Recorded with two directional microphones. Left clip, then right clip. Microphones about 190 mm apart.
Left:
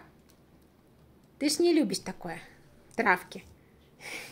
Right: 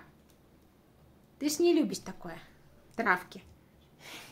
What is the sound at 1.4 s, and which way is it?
A woman's voice, 15° left (ahead or behind).